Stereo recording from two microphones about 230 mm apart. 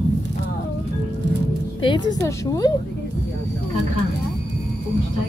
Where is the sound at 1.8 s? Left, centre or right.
Centre.